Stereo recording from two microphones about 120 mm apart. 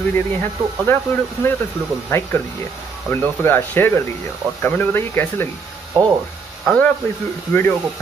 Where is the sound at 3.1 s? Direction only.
15° left (ahead or behind).